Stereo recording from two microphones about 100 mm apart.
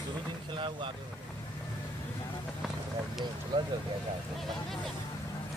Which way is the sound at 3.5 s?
50° right (ahead or behind).